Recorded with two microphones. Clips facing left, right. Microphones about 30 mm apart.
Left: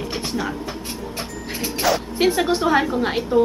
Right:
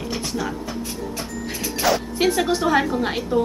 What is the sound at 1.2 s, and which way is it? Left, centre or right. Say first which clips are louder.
Vehicle: even; left.